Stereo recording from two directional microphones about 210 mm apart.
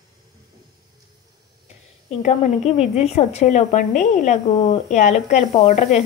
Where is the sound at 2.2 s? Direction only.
30° left (ahead or behind).